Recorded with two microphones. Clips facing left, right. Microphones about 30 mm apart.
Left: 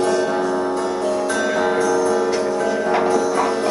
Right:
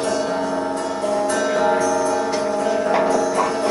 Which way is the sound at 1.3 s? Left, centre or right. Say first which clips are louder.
Right 2 dB; centre.